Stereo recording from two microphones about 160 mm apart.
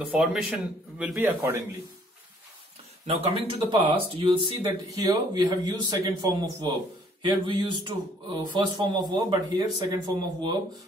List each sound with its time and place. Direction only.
0.0 s a man's voice: 5° right (ahead or behind)
3.3 s speech: 30° right (ahead or behind)